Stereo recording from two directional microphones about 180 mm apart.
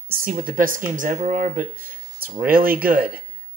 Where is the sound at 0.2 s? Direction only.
50° right (ahead or behind).